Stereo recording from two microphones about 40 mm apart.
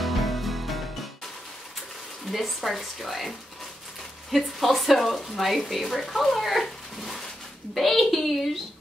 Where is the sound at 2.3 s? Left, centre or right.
Centre.